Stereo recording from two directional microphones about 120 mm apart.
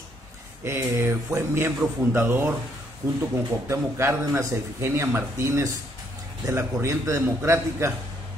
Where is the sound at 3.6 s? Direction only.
20° right (ahead or behind).